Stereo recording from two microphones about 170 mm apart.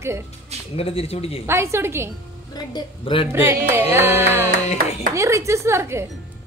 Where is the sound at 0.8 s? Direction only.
35° left (ahead or behind).